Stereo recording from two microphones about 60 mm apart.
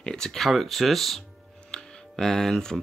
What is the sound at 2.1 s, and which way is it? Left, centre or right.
Speech, centre.